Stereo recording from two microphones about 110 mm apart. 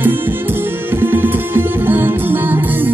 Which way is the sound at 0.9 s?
20° right (ahead or behind).